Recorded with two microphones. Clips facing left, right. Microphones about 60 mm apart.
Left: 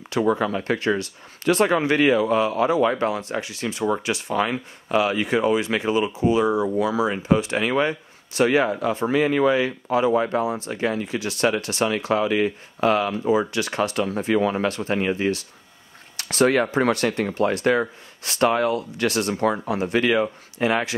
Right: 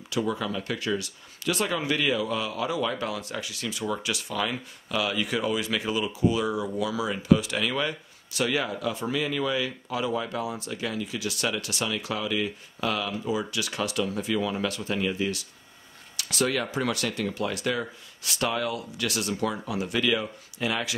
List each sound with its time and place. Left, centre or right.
0.1 s speech: left